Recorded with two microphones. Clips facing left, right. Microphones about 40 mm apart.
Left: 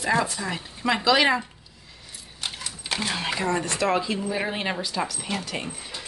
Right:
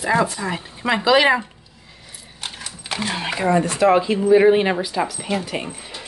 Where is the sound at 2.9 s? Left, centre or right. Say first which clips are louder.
Right 3 dB; centre.